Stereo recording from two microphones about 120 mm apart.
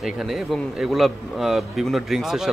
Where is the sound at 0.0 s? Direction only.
5° right (ahead or behind).